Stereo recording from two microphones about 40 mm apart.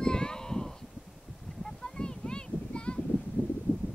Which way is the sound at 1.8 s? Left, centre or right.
Left.